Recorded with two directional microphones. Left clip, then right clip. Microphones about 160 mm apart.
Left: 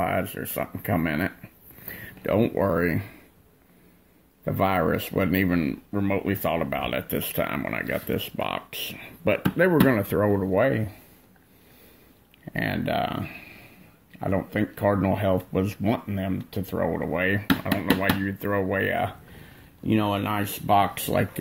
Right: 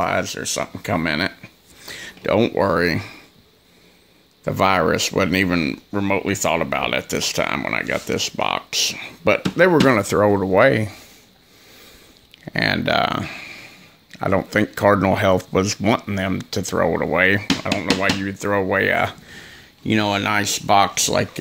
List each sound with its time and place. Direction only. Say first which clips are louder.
0.0 s speech: right 5 dB; 10° right (ahead or behind)
4.5 s speech: right 6 dB; 20° right (ahead or behind); by 11.0 s 35° right (ahead or behind)
12.4 s speech: right 8 dB; 30° right (ahead or behind)
17.5 s speech: right 4 dB; 20° right (ahead or behind)